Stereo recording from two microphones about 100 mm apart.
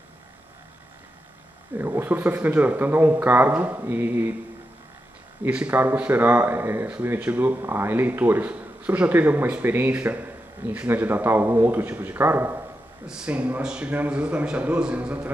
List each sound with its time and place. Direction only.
1.8 s speech: 20° right (ahead or behind)
5.5 s speech: 15° right (ahead or behind)
13.0 s a man's voice: 10° right (ahead or behind)